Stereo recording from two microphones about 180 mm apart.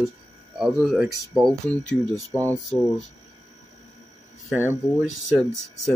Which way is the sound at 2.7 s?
10° right (ahead or behind).